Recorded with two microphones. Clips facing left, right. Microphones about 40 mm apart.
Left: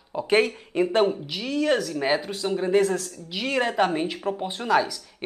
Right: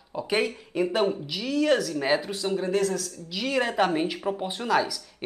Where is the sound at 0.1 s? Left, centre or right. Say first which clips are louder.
Left 5 dB; left.